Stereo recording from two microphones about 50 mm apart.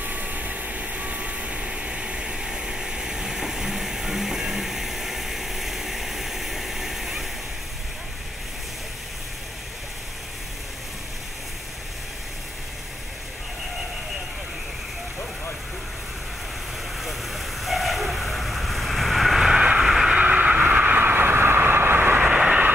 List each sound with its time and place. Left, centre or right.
0.0 s vehicle: right; by 7.2 s centre
17.0 s vehicle: centre
20.2 s train: right
22.3 s vehicle: right